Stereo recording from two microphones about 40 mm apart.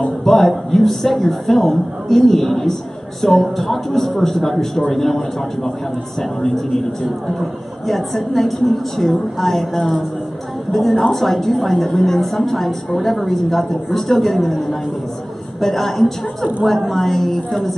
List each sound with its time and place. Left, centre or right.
0.0 s a woman's voice: centre